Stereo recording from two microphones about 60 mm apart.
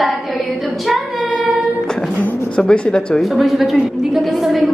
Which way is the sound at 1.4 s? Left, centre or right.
Centre.